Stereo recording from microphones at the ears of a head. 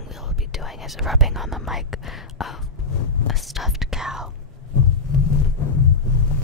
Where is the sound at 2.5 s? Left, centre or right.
Left.